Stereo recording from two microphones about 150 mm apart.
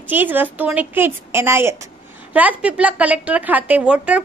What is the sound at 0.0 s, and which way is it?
A woman's voice, 10° right (ahead or behind).